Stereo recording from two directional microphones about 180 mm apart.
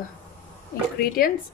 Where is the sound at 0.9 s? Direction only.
55° left (ahead or behind).